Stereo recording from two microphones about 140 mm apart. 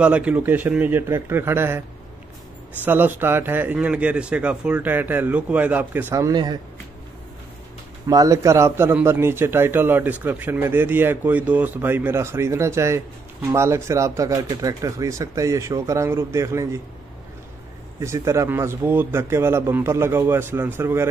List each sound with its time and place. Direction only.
0.0 s a man's voice: 10° right (ahead or behind)
2.8 s a man's voice: 15° right (ahead or behind); by 6.6 s 30° right (ahead or behind)
8.1 s a man's voice: 25° right (ahead or behind)
18.0 s a man's voice: 20° right (ahead or behind)